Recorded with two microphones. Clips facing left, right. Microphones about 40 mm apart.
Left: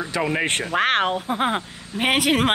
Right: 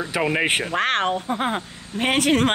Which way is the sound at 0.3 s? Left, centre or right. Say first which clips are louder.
Right 2 dB; centre.